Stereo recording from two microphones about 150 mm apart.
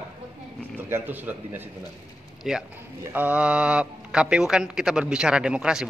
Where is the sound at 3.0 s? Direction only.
10° right (ahead or behind).